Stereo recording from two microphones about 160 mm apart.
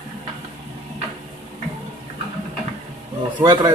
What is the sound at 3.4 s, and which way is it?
Speech, 30° right (ahead or behind).